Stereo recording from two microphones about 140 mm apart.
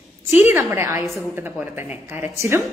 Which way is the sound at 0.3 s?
15° right (ahead or behind).